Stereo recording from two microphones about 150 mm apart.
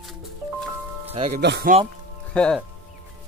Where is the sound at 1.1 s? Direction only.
45° right (ahead or behind).